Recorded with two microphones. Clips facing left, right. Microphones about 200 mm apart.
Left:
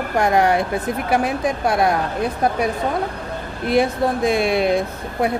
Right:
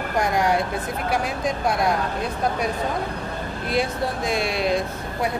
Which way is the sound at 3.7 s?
55° left (ahead or behind).